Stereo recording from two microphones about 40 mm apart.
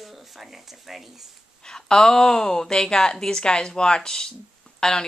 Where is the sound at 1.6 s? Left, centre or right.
Centre.